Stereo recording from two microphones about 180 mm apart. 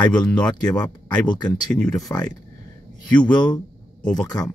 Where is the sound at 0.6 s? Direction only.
20° left (ahead or behind).